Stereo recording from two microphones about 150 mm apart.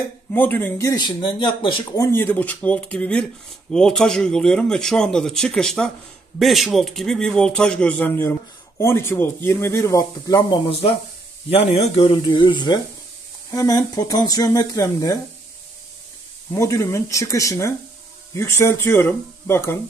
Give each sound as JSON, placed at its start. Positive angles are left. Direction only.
{"t": 0.3, "sound": "speech", "side_deg": 15}
{"t": 2.0, "sound": "speech", "side_deg": 15}
{"t": 10.7, "sound": "speech", "side_deg": 40}
{"t": 16.5, "sound": "speech", "side_deg": 20}